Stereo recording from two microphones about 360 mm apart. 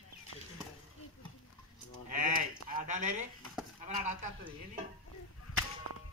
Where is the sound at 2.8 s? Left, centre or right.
Centre.